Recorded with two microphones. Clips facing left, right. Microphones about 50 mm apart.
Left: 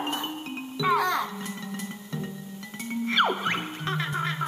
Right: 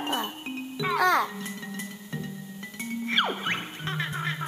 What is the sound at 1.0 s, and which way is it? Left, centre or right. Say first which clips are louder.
Music: right 4 dB; right.